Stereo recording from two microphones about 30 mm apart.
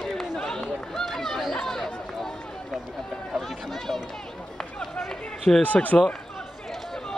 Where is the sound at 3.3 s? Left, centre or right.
Centre.